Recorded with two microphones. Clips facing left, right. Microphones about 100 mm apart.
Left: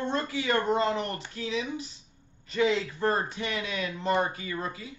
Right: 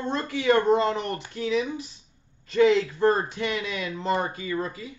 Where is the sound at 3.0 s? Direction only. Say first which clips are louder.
Right 5 dB; 35° right (ahead or behind).